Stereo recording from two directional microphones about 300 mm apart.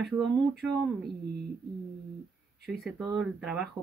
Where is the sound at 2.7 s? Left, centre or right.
Centre.